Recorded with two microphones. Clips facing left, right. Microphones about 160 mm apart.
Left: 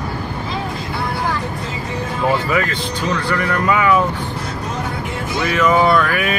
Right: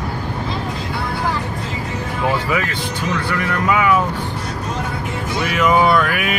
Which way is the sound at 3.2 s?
5° right (ahead or behind).